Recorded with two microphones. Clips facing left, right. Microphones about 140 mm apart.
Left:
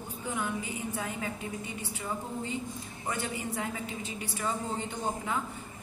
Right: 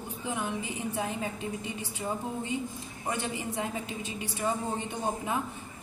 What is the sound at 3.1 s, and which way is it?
A woman's voice, 20° right (ahead or behind).